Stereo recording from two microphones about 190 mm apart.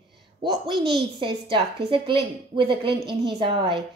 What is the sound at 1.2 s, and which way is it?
A woman's voice, 25° right (ahead or behind).